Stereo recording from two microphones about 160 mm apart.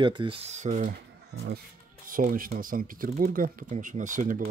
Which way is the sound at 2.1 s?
60° right (ahead or behind).